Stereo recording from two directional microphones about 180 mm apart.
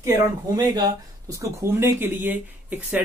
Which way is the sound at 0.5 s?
20° right (ahead or behind).